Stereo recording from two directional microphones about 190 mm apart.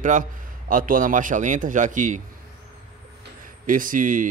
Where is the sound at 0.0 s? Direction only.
45° right (ahead or behind).